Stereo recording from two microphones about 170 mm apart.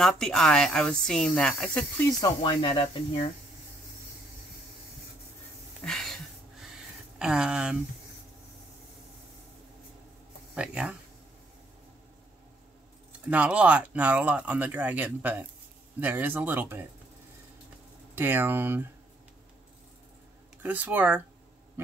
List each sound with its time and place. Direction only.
0.0 s speech: 5° left (ahead or behind)
2.1 s speech: 25° left (ahead or behind)
5.9 s a sound: centre (ahead or behind)
7.2 s speech: 5° right (ahead or behind)
10.5 s speech: 5° right (ahead or behind)
13.3 s speech: 5° right (ahead or behind)
18.1 s speech: 10° right (ahead or behind)
20.6 s speech: 10° right (ahead or behind)